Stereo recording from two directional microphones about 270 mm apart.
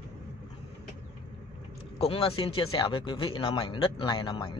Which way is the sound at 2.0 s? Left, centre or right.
Left.